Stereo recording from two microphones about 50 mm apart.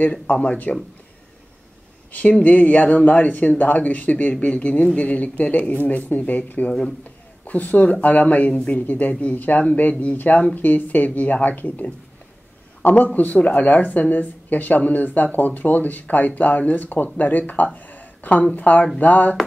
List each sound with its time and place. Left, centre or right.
0.1 s speech: left
2.4 s speech: left
17.7 s a sound: left
18.5 s speech: left